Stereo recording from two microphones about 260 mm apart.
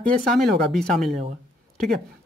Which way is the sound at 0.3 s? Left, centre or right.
Centre.